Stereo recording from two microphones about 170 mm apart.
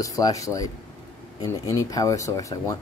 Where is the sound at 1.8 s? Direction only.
20° left (ahead or behind).